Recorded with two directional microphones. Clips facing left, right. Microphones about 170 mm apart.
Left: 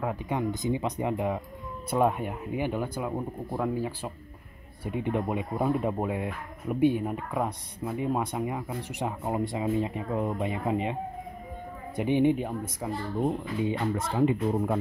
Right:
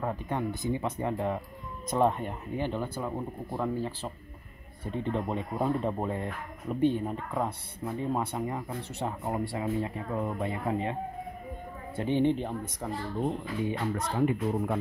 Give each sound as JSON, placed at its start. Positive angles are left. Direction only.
{"t": 0.0, "sound": "speech", "side_deg": 10}
{"t": 12.0, "sound": "speech", "side_deg": 15}
{"t": 13.7, "sound": "speech", "side_deg": 25}